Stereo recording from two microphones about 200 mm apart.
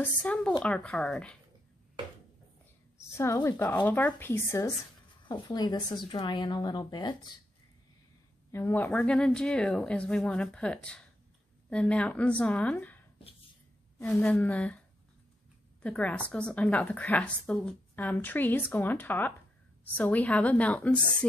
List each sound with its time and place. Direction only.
0.0 s speech: 5° left (ahead or behind)
3.0 s a woman's voice: 15° left (ahead or behind)
8.5 s a woman's voice: 10° left (ahead or behind)
15.8 s a woman's voice: 5° left (ahead or behind)